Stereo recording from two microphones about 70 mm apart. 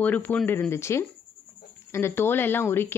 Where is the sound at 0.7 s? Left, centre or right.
Left.